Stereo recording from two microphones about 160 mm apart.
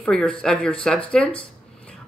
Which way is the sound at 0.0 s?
5° left (ahead or behind).